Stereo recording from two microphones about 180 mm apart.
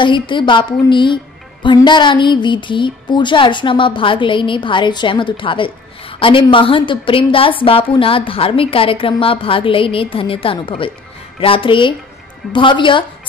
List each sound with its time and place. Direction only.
0.0 s speech: 25° left (ahead or behind)